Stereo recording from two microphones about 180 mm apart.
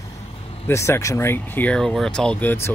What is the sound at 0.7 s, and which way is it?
Speech, 15° left (ahead or behind).